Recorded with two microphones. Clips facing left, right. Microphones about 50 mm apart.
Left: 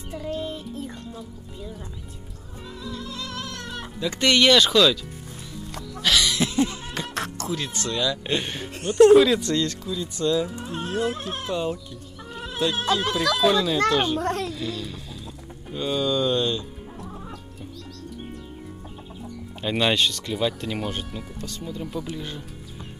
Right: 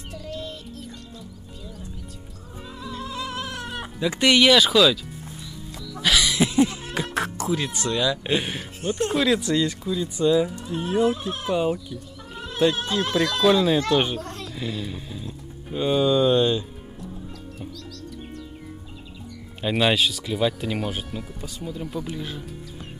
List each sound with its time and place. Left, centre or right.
0.1 s speech: left
2.8 s a sound: right; by 5.0 s centre
5.9 s music: centre
9.1 s speech: centre
12.6 s speech: right
12.9 s speech: centre
13.6 s speech: centre
14.2 s dog: left
14.5 s speech: centre
19.6 s speech: centre